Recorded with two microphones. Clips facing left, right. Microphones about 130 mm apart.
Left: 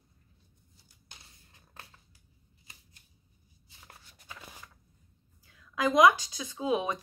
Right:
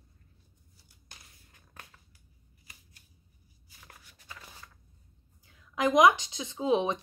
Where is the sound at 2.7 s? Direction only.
25° left (ahead or behind).